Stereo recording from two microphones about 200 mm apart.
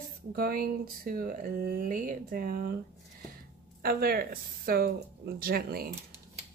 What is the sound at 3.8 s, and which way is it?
Speech, 50° right (ahead or behind).